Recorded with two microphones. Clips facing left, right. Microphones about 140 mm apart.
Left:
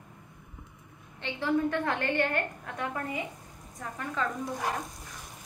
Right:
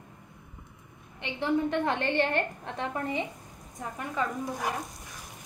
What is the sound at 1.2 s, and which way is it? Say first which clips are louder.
A woman's voice: even; 20° right (ahead or behind).